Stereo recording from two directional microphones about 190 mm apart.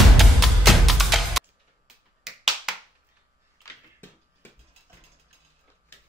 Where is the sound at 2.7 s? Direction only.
5° right (ahead or behind).